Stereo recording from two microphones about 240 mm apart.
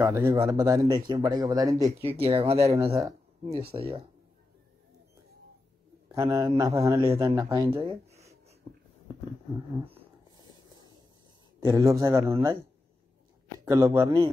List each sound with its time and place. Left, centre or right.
0.0 s speech: centre
2.9 s speech: centre
6.1 s speech: centre
9.8 s a sound: right
11.6 s speech: centre
13.7 s speech: centre